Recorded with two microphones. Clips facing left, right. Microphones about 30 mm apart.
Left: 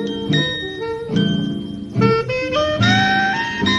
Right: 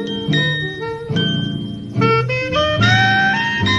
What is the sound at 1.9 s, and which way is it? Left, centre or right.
Music, centre.